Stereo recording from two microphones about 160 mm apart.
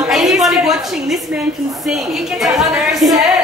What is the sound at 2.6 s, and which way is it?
Speech, centre (ahead or behind).